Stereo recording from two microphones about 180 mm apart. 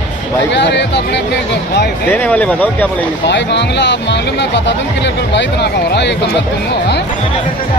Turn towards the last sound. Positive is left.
turn(degrees=70)  # may be behind; listen again after turning